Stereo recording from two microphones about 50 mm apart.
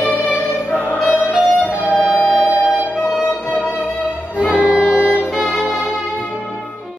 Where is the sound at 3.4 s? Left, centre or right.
Left.